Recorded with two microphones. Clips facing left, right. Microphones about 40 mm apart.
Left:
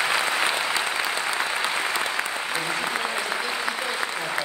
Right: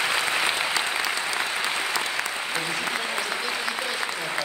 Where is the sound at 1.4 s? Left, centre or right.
Centre.